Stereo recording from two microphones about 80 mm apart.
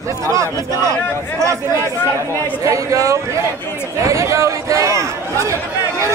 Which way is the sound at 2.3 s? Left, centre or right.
Left.